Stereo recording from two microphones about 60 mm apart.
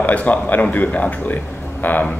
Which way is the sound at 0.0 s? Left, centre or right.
Left.